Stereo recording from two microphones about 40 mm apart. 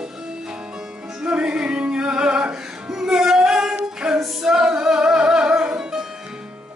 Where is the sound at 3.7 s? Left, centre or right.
Right.